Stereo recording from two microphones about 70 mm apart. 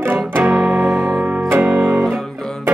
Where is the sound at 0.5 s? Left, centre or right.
Centre.